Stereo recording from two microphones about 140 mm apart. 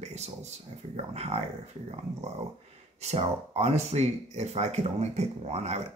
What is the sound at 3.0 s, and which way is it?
Speech, 50° right (ahead or behind).